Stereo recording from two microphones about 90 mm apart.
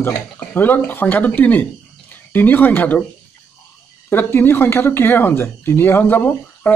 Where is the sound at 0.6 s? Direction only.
20° left (ahead or behind).